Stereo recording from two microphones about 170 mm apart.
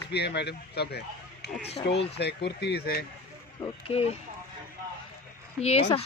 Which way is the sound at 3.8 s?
35° left (ahead or behind).